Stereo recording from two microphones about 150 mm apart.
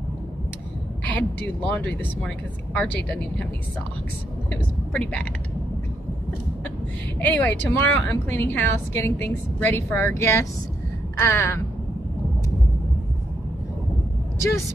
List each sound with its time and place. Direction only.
1.0 s speech: 10° left (ahead or behind)
4.5 s speech: 10° left (ahead or behind)
7.2 s speech: 10° left (ahead or behind)